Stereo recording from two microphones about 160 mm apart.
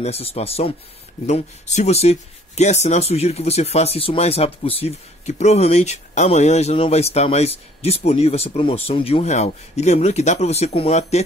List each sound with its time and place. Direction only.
0.0 s speech: 40° left (ahead or behind)